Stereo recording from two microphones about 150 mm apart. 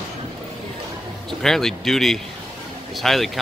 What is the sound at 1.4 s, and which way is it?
Speech, 5° left (ahead or behind).